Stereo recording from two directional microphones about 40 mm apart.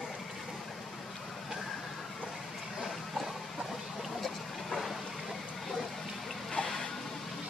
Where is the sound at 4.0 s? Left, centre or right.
Centre.